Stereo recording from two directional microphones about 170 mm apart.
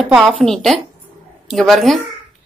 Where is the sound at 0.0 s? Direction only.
Centre (ahead or behind).